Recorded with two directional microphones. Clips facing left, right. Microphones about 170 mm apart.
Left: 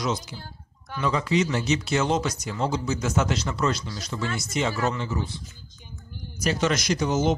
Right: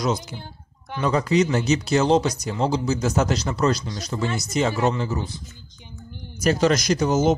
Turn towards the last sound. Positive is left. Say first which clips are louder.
# right 4 dB
turn(degrees=-45)  # may be behind; listen again after turning